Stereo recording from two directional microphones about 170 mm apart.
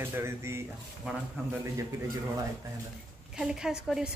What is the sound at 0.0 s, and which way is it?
Speech, 15° right (ahead or behind).